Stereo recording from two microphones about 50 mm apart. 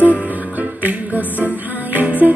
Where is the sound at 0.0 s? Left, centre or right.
Right.